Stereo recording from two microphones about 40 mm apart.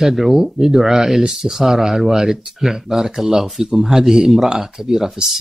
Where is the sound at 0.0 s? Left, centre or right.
Centre.